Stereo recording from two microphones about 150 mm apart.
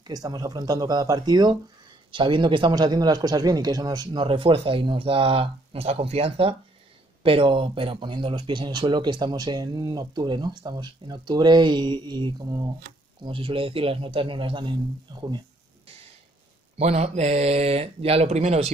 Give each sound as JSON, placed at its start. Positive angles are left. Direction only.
{"t": 0.0, "sound": "speech", "side_deg": -25}
{"t": 13.2, "sound": "speech", "side_deg": -35}
{"t": 16.7, "sound": "speech", "side_deg": -45}